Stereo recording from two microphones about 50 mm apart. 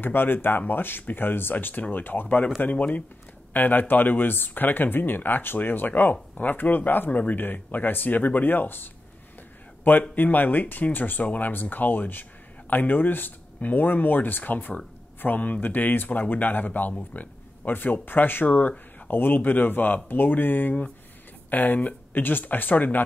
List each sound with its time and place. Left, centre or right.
0.0 s speech: left
2.7 s speech: left
3.5 s speech: left
10.1 s speech: left